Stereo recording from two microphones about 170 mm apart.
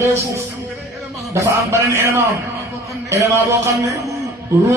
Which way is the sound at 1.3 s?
20° right (ahead or behind).